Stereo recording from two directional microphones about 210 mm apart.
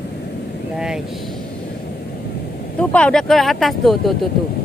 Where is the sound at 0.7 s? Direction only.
5° right (ahead or behind).